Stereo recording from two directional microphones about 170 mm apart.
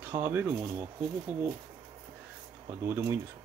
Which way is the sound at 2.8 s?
15° right (ahead or behind).